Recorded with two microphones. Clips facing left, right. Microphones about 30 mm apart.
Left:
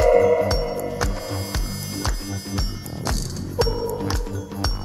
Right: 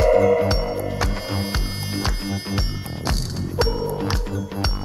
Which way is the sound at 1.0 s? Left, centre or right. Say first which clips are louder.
Right 2 dB; right.